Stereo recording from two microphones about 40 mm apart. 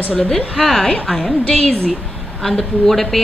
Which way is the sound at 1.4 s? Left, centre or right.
Centre.